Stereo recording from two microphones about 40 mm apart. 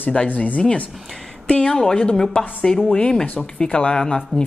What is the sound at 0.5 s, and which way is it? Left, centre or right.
Speech, left.